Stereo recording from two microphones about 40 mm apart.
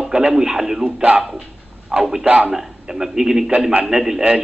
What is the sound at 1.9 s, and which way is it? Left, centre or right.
Speech, centre.